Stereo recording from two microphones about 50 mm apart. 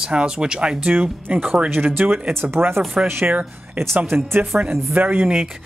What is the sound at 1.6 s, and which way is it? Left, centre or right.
Speech, right.